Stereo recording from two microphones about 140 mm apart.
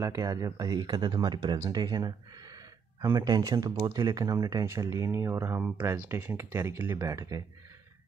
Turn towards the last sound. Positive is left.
turn(degrees=-25)  # may be behind; listen again after turning